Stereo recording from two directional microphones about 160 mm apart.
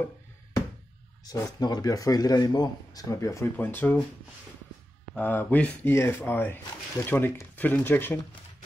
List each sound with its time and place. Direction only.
1.2 s a man's voice: 25° left (ahead or behind)
5.1 s speech: 10° left (ahead or behind)